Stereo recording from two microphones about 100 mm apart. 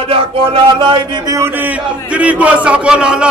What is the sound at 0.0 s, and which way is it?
Speech, 65° right (ahead or behind).